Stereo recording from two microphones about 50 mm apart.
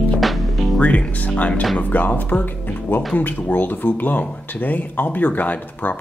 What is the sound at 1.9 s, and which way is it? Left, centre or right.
Speech, left.